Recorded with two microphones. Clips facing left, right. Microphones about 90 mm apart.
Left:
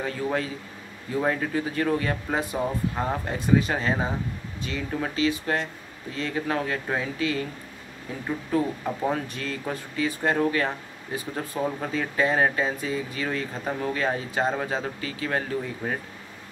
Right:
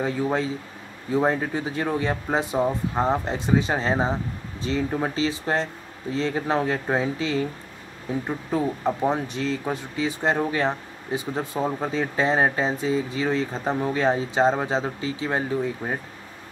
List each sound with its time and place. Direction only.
0.0 s speech: 20° right (ahead or behind)